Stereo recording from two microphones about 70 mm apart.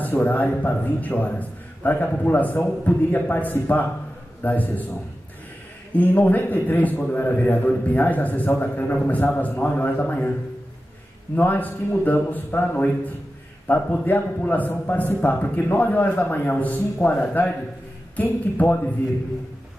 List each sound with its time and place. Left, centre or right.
0.1 s a man's voice: left
5.9 s a man's voice: left
11.3 s a man's voice: left